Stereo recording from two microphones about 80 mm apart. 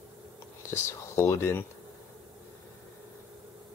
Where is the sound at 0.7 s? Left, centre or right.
Left.